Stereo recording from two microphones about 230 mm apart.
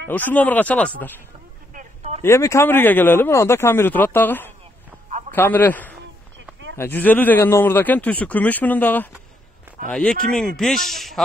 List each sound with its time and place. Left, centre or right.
0.1 s a man's voice: centre
1.7 s telephone: right
2.2 s a man's voice: centre